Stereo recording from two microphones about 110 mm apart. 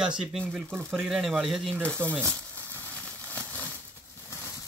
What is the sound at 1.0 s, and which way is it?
Speech, 5° right (ahead or behind).